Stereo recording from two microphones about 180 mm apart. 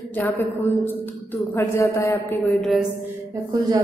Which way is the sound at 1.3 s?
10° left (ahead or behind).